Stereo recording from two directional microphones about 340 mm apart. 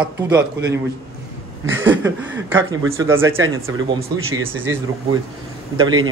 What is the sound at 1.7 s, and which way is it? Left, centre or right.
Speech, right.